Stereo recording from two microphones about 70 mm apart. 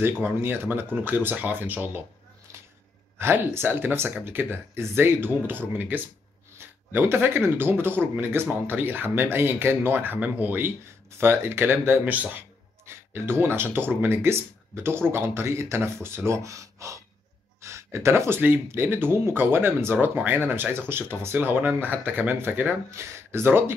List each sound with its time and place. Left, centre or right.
0.0 s speech: right
3.2 s speech: right
12.8 s speech: right
17.6 s gasp: right
18.4 s speech: right
22.8 s speech: right